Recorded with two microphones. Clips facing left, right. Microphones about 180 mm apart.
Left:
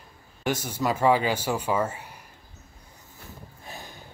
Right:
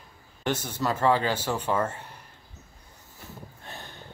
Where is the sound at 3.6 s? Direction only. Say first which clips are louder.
Left 3 dB; 10° left (ahead or behind).